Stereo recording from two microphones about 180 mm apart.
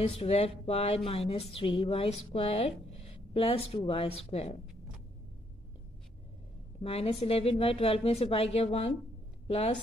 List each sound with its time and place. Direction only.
0.0 s speech: 35° left (ahead or behind)
6.8 s speech: 35° left (ahead or behind)